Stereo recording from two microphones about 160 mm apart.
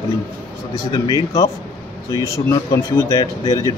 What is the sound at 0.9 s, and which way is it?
Speech, 25° left (ahead or behind).